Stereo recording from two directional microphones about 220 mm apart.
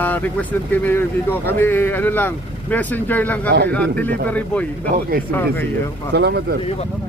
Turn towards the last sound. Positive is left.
turn(degrees=-50)  # may be behind; listen again after turning